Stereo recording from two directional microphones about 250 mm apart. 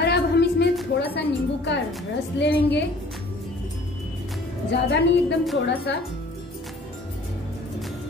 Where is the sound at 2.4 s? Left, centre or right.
Left.